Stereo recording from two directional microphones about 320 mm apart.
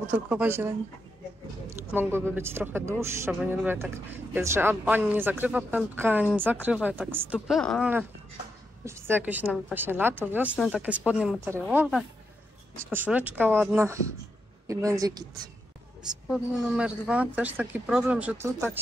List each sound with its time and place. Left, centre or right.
0.1 s a woman's voice: centre